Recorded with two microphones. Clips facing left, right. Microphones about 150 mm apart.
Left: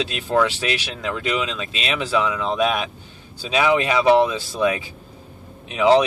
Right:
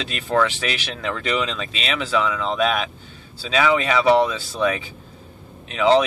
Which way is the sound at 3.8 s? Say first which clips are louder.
Left 1 dB; 10° left (ahead or behind).